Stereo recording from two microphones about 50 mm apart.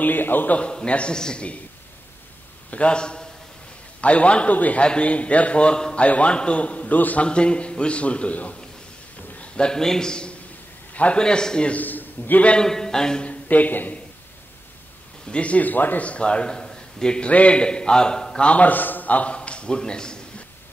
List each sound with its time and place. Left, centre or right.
0.0 s speech: left
0.6 s a man's voice: left
2.7 s a man's voice: left
7.2 s a man's voice: left
9.4 s a man's voice: centre
10.9 s a sound: left
11.1 s speech: centre
11.7 s a man's voice: left
12.6 s speech: centre
13.5 s speech: left
15.2 s speech: left
16.0 s a man's voice: left
17.3 s a man's voice: left